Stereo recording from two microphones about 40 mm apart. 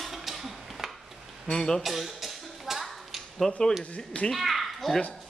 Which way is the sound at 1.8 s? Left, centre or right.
Centre.